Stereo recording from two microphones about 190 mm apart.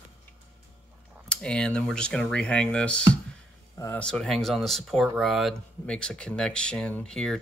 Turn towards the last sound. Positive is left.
turn(degrees=5)  # may be behind; listen again after turning